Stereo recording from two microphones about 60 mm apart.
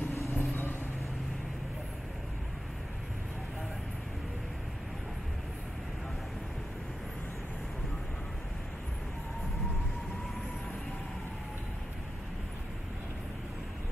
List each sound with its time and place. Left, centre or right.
0.1 s vehicle: left